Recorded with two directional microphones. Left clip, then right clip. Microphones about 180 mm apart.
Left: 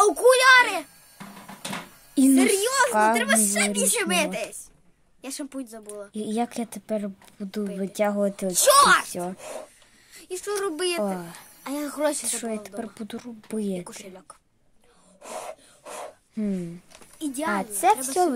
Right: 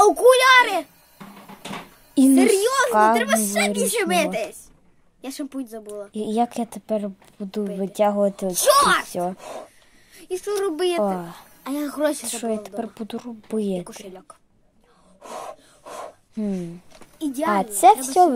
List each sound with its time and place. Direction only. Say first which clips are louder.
0.0 s a sound: right 3 dB; 10° left (ahead or behind)
2.3 s a woman's voice: right 4 dB; 10° left (ahead or behind)
2.9 s speech: right 7 dB; centre (ahead or behind)
3.2 s a woman's voice: right 2 dB; 10° left (ahead or behind)
6.1 s speech: right 6 dB; 5° right (ahead or behind)
8.5 s a woman's voice: left 1 dB; 15° left (ahead or behind)
9.1 s speech: right 6 dB; 5° right (ahead or behind)
10.1 s a woman's voice: right 4 dB; 15° left (ahead or behind)
12.2 s speech: right 4 dB; 5° right (ahead or behind)
13.8 s a woman's voice: right 3 dB; 10° left (ahead or behind)
15.2 s a sound: right 2 dB; 25° left (ahead or behind)
16.3 s speech: right 2 dB; 5° left (ahead or behind)
17.2 s a woman's voice: right 5 dB; 15° left (ahead or behind)
17.5 s speech: right 7 dB; 20° right (ahead or behind)